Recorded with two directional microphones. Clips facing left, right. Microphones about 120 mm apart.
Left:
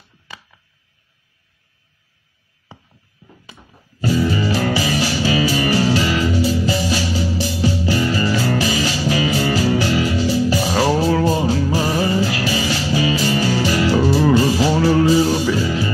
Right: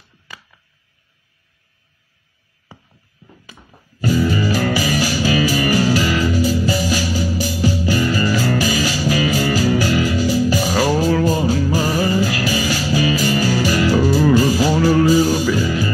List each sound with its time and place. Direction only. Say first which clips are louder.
4.0 s music: right 1 dB; 25° left (ahead or behind)
4.6 s music: right 1 dB; 30° left (ahead or behind)